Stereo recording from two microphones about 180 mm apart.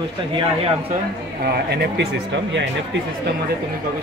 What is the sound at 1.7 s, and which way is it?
Speech, 65° right (ahead or behind).